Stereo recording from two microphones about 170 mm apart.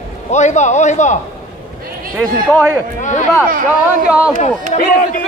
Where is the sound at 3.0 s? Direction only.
45° left (ahead or behind).